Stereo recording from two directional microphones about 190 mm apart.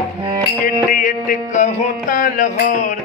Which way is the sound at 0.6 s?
45° left (ahead or behind).